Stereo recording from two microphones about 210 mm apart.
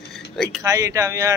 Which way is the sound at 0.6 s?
15° right (ahead or behind).